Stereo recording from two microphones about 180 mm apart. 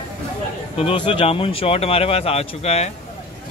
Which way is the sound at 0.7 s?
30° left (ahead or behind).